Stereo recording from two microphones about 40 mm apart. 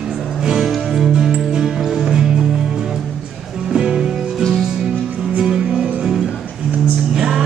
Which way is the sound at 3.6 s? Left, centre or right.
Centre.